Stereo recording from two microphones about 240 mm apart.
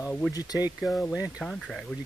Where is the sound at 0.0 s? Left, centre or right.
Centre.